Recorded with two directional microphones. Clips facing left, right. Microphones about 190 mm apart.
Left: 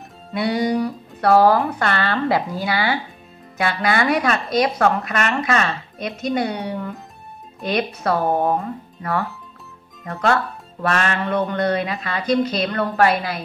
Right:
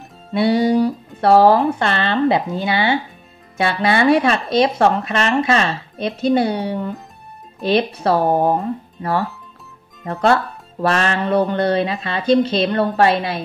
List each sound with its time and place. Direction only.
0.3 s speech: 30° right (ahead or behind)
8.4 s music: 35° right (ahead or behind)
10.0 s speech: 30° right (ahead or behind)